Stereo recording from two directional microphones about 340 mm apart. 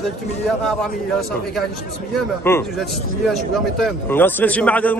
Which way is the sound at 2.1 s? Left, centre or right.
Centre.